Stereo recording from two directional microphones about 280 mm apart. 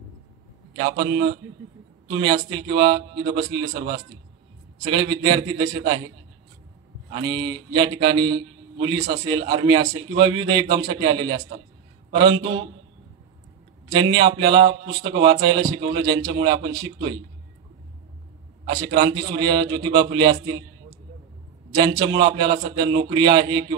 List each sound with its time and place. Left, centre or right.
0.7 s a man's voice: centre
7.1 s a man's voice: centre
13.8 s a man's voice: centre
18.7 s a man's voice: centre
21.7 s a man's voice: centre